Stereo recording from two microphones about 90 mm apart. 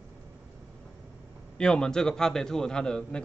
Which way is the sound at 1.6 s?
10° left (ahead or behind).